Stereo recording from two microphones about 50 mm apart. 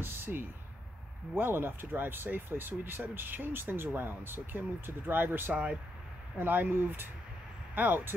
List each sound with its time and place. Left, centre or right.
0.0 s speech: right
5.5 s speech: right
6.3 s speech: right